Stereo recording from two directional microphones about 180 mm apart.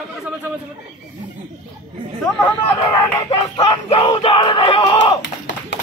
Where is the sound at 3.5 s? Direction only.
30° left (ahead or behind).